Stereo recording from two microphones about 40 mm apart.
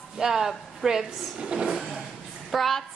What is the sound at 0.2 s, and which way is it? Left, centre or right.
Speech, centre.